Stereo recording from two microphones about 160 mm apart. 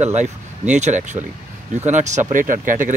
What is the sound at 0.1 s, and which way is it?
Speech, 45° right (ahead or behind).